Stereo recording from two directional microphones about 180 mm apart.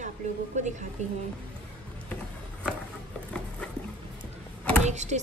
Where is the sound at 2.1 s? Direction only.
5° left (ahead or behind).